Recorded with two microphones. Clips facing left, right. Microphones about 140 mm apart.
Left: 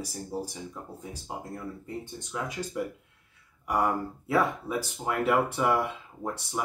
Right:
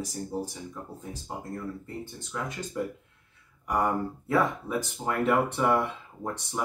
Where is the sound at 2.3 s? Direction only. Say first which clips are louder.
Even; 15° left (ahead or behind).